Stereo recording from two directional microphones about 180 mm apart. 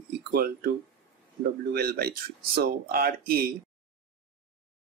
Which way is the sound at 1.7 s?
60° right (ahead or behind).